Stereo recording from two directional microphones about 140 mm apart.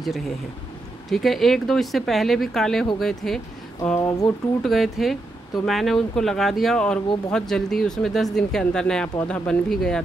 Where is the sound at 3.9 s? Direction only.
25° left (ahead or behind).